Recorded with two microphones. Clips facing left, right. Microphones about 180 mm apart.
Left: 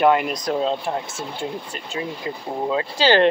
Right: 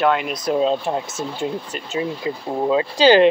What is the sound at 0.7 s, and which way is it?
Speech, 20° right (ahead or behind).